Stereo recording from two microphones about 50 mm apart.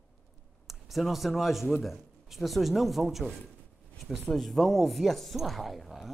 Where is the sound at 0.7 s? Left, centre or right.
Centre.